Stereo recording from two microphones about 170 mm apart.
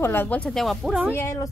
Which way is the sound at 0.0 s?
10° left (ahead or behind).